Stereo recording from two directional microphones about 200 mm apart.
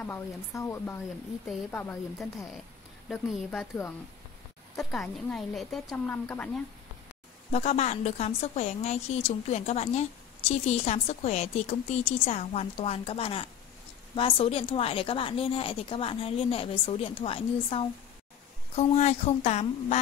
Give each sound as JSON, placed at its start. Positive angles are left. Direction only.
{"t": 0.0, "sound": "speech", "side_deg": 10}
{"t": 3.1, "sound": "a woman's voice", "side_deg": 0}
{"t": 4.7, "sound": "a woman's voice", "side_deg": 0}
{"t": 7.5, "sound": "a woman's voice", "side_deg": 35}